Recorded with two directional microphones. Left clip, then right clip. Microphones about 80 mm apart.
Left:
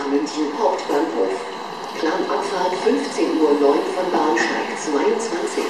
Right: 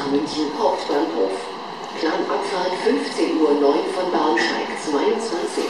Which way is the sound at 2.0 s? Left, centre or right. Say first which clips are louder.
Left 1 dB; centre.